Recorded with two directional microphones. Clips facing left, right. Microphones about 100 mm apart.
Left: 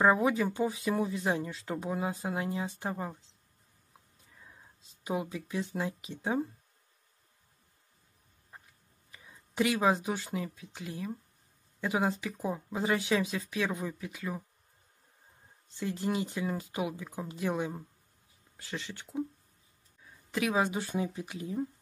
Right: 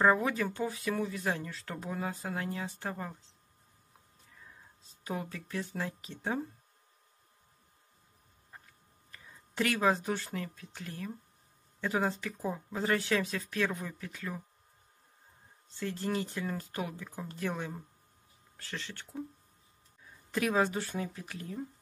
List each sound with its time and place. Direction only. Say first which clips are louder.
0.0 s speech: left 2 dB; 15° left (ahead or behind)
5.0 s speech: left 4 dB; 15° left (ahead or behind)
9.1 s speech: left 2 dB; 10° left (ahead or behind)
15.8 s speech: left 2 dB; 15° left (ahead or behind)
20.0 s a sound: even; 5° left (ahead or behind)
20.5 s speech: left 1 dB; 15° left (ahead or behind)